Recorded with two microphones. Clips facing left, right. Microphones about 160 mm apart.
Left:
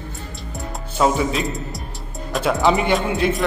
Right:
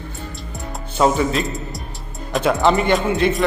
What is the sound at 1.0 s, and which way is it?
A man's voice, centre (ahead or behind).